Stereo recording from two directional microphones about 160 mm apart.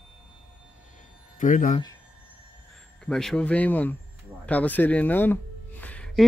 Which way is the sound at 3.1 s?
5° left (ahead or behind).